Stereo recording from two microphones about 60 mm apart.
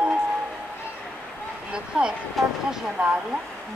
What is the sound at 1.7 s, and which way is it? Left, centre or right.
Vehicle, centre.